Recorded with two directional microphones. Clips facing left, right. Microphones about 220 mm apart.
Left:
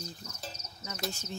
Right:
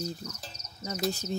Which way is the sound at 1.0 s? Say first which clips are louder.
Right 8 dB; 35° right (ahead or behind).